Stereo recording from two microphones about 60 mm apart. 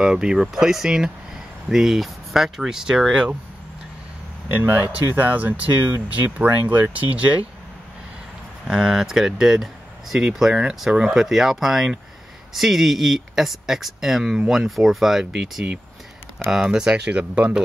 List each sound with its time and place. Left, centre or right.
0.0 s speech: centre
4.6 s speech: right
8.6 s speech: centre
16.9 s speech: right